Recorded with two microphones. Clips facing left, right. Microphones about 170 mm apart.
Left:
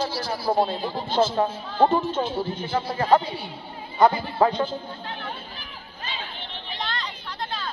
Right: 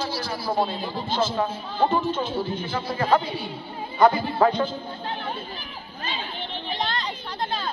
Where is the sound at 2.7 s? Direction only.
30° left (ahead or behind).